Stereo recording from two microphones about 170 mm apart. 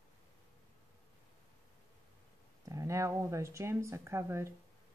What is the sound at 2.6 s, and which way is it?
Speech, 20° right (ahead or behind).